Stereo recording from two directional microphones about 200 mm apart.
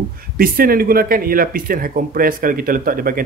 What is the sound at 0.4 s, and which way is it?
Speech, 45° right (ahead or behind).